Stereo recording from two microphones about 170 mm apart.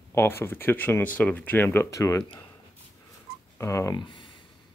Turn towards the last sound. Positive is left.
turn(degrees=30)  # may be behind; listen again after turning